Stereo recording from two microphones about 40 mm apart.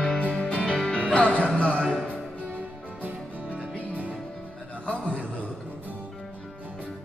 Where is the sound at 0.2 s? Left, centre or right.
Left.